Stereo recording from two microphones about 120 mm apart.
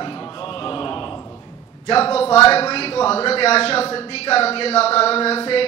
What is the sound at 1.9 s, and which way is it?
Speech, 55° left (ahead or behind).